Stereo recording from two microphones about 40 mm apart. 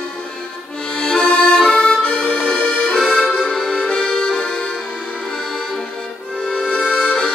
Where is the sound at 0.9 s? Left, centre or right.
Left.